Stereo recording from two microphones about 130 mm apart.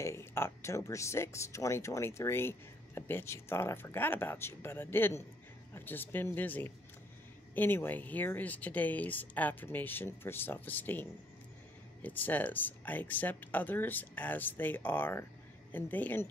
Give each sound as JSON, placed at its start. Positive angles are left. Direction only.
{"t": 0.0, "sound": "speech", "side_deg": 20}